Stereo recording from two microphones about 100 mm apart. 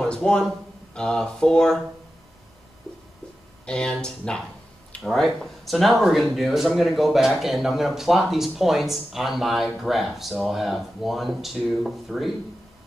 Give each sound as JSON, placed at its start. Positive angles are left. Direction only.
{"t": 0.0, "sound": "a sound", "side_deg": 10}
{"t": 0.9, "sound": "speech", "side_deg": 10}
{"t": 3.6, "sound": "speech", "side_deg": 10}